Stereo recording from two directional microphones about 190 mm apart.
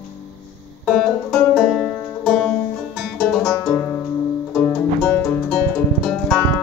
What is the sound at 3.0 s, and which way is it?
Music, centre (ahead or behind).